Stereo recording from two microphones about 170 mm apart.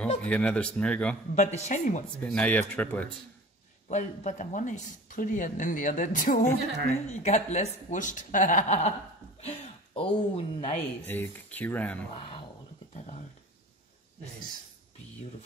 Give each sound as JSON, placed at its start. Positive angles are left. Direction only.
{"t": 0.2, "sound": "speech", "side_deg": 5}
{"t": 1.3, "sound": "speech", "side_deg": 40}
{"t": 2.1, "sound": "speech", "side_deg": 5}
{"t": 3.9, "sound": "speech", "side_deg": 45}
{"t": 10.8, "sound": "speech", "side_deg": 10}